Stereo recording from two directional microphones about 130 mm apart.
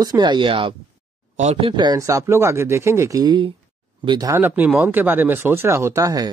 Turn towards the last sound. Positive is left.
turn(degrees=-25)  # may be behind; listen again after turning